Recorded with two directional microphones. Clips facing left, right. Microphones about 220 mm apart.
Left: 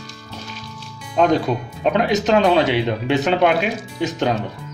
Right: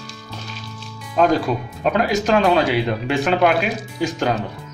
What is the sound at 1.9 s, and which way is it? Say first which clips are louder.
Speech: left 1 dB; 20° left (ahead or behind).